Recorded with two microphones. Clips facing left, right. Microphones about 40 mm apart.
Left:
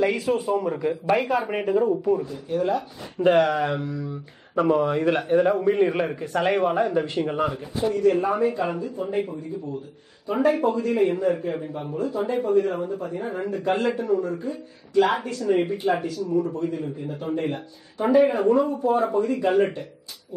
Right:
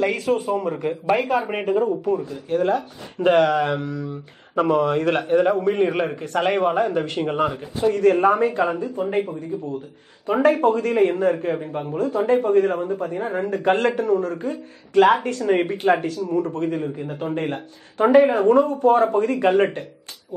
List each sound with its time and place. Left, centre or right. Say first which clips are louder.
0.0 s speech: even; right
0.6 s a man's voice: even; right
1.1 s speech: right 2 dB; centre
1.5 s a man's voice: right 1 dB; right
5.7 s a man's voice: right 1 dB; right
6.1 s speech: right 2 dB; right
6.6 s a man's voice: right 2 dB; right
7.8 s speech: right 4 dB; right
10.2 s a man's voice: right 4 dB; right